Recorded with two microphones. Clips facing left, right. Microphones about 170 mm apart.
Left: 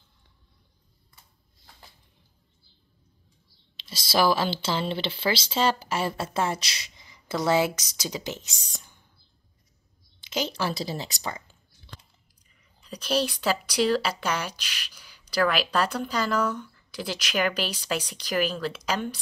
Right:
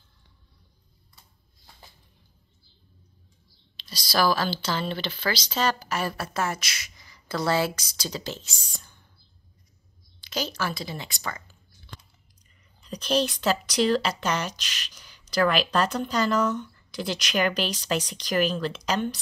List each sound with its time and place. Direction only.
3.7 s speech: 25° left (ahead or behind)
10.3 s speech: 25° left (ahead or behind)
10.8 s a sound: 35° left (ahead or behind)
12.8 s speech: 5° left (ahead or behind)